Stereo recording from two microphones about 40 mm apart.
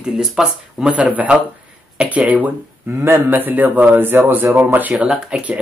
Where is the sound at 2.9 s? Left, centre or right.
Right.